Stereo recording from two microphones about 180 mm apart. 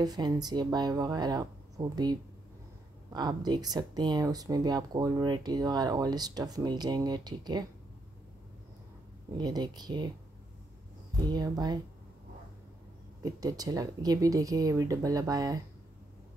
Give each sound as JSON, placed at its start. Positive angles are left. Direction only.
{"t": 0.0, "sound": "speech", "side_deg": -20}
{"t": 9.4, "sound": "speech", "side_deg": -20}
{"t": 11.3, "sound": "speech", "side_deg": -20}
{"t": 13.2, "sound": "speech", "side_deg": -20}